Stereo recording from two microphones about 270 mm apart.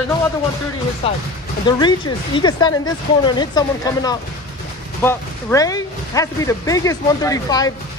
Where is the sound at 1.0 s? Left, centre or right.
Left.